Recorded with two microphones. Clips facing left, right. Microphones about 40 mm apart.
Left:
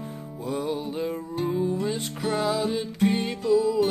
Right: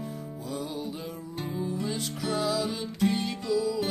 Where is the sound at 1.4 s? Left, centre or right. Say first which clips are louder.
Left 6 dB; left.